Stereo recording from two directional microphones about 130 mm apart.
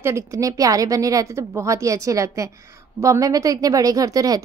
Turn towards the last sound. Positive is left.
turn(degrees=-25)  # may be behind; listen again after turning